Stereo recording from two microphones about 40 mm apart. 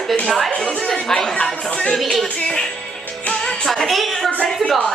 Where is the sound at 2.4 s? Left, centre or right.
Centre.